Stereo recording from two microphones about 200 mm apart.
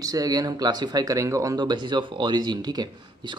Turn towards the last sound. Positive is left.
turn(degrees=-20)  # may be behind; listen again after turning